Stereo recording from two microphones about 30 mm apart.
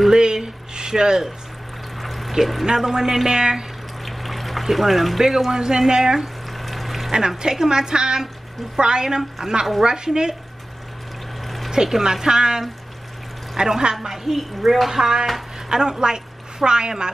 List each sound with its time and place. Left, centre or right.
0.1 s speech: right
2.0 s pour: centre
2.6 s a woman's voice: centre
4.0 s water: centre
5.5 s a woman's voice: right
6.5 s a sound: centre
7.1 s a woman's voice: right
11.4 s pour: centre
12.0 s a woman's voice: centre
14.1 s a woman's voice: centre; by 16.9 s right